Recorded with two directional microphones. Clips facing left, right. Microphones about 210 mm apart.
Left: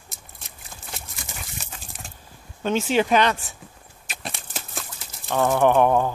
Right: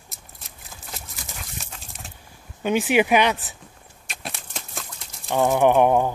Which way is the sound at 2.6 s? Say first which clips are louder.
Right 2 dB; 15° right (ahead or behind).